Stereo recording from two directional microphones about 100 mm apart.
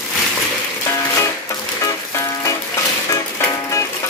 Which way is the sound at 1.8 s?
30° left (ahead or behind).